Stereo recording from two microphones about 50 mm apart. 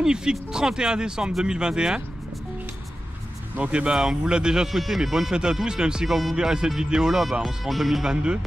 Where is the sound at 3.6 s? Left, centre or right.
Right; by 8.1 s centre.